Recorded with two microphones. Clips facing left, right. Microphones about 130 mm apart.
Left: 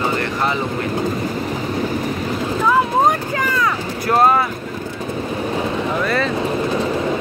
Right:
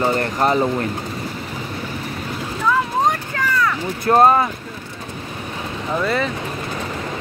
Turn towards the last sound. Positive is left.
turn(degrees=-20)  # may be behind; listen again after turning